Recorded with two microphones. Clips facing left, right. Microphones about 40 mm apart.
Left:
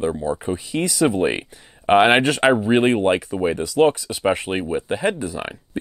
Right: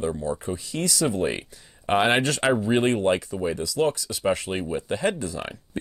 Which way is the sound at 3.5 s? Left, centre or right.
Left.